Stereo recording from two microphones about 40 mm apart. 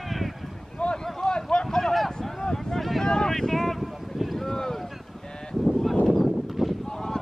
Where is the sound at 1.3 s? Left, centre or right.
Left.